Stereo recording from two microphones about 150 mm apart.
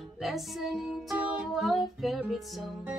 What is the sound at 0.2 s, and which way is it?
Music, centre (ahead or behind).